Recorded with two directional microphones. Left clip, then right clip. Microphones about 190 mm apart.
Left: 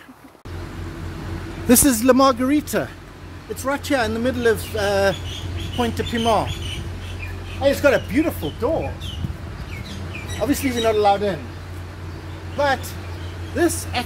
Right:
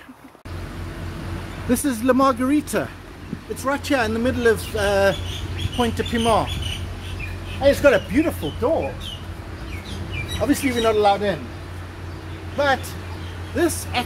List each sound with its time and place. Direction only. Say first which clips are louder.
1.7 s speech: left 5 dB; 65° left (ahead or behind)
2.1 s speech: left 2 dB; 30° left (ahead or behind)
3.6 s speech: even; 5° left (ahead or behind)
7.6 s speech: right 1 dB; 10° left (ahead or behind)
10.4 s speech: even; 5° left (ahead or behind)
12.5 s speech: even; centre (ahead or behind)